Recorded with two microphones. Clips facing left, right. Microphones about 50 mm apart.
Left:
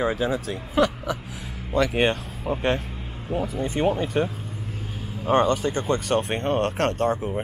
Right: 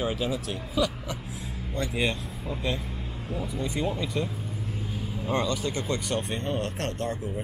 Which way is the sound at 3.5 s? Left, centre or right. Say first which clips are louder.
Left 6 dB; left.